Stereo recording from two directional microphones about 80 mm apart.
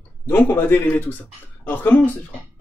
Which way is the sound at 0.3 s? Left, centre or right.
Left.